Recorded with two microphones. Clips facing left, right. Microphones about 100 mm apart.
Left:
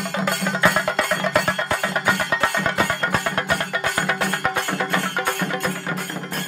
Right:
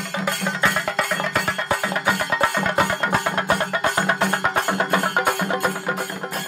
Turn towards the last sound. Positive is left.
turn(degrees=-15)  # may be behind; listen again after turning